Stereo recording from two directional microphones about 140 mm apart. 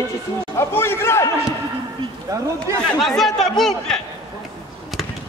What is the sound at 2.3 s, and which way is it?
Speech, 25° right (ahead or behind).